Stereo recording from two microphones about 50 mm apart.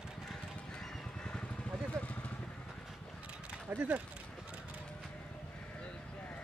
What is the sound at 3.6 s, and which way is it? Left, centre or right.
Speech, right.